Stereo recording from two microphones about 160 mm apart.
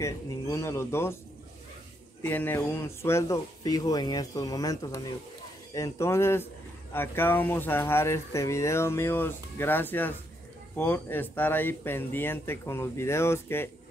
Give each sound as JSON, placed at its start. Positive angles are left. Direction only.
{"t": 0.0, "sound": "speech", "side_deg": 20}
{"t": 2.2, "sound": "speech", "side_deg": 15}